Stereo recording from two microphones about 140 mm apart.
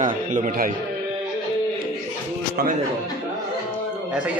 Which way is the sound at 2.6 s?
90° right.